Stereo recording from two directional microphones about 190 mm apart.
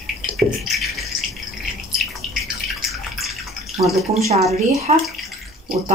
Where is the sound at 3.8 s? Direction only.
35° right (ahead or behind).